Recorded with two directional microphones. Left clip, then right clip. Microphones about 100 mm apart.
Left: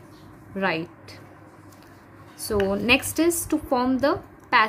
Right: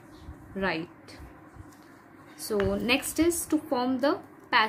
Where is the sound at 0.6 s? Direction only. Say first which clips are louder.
Left 5 dB; 45° left (ahead or behind).